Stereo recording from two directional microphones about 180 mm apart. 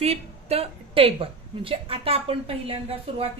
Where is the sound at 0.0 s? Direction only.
35° right (ahead or behind).